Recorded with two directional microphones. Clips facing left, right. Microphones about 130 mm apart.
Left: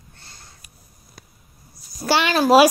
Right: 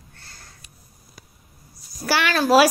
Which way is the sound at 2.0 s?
25° left (ahead or behind).